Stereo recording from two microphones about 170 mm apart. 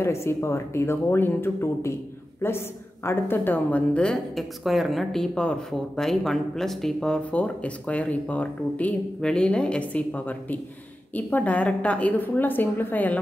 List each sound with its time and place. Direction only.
0.0 s a woman's voice: 15° left (ahead or behind)